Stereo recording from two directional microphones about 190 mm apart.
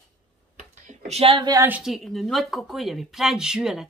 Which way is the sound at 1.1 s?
30° right (ahead or behind).